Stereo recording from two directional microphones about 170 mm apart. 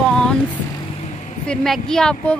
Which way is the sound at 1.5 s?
5° left (ahead or behind).